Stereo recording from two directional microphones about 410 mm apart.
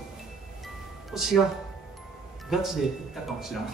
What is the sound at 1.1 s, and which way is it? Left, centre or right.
Speech, centre.